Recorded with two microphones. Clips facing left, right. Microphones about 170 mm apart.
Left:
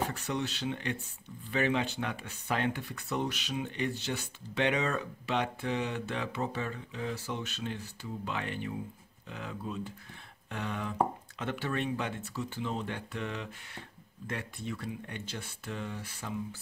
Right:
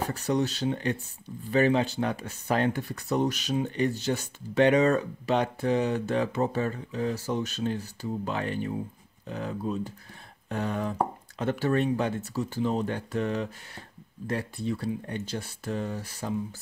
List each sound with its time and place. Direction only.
0.0 s speech: 40° right (ahead or behind)